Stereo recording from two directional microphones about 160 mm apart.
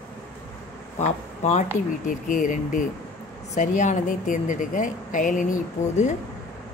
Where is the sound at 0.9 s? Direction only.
45° left (ahead or behind).